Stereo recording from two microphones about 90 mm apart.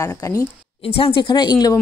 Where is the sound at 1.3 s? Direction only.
50° left (ahead or behind).